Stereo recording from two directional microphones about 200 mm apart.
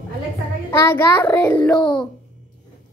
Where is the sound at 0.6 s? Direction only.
10° left (ahead or behind).